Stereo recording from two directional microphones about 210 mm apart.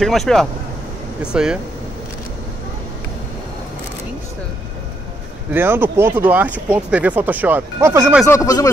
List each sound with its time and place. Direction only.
0.0 s speech: centre (ahead or behind)
5.5 s speech: 10° right (ahead or behind)
8.3 s speech: 15° left (ahead or behind)